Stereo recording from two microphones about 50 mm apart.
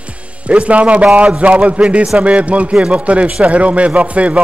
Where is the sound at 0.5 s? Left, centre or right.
Right.